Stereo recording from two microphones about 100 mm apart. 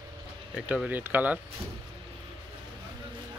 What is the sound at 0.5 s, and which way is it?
Speech, 10° right (ahead or behind).